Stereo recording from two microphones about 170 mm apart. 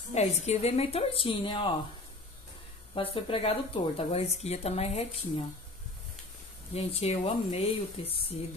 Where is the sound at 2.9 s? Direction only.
35° left (ahead or behind).